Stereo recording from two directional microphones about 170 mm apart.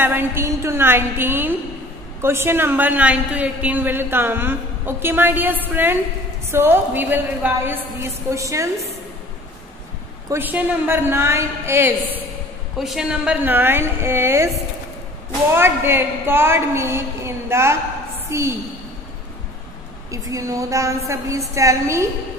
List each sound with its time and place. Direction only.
0.0 s a woman's voice: 10° right (ahead or behind)
10.3 s a woman's voice: 10° right (ahead or behind)
12.7 s a woman's voice: centre (ahead or behind)
15.5 s a woman's voice: 15° right (ahead or behind)
20.1 s a woman's voice: 20° right (ahead or behind)